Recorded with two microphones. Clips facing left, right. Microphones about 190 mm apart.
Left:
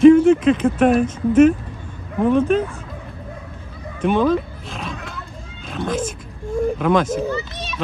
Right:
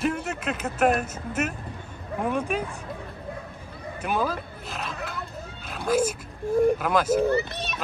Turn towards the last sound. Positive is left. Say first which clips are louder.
# right 1 dB
turn(degrees=-55)  # may be behind; listen again after turning